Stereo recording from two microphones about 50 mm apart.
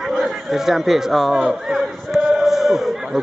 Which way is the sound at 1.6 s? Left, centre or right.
Centre.